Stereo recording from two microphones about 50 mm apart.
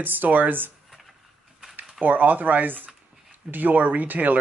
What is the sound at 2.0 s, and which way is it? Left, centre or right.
Speech, right.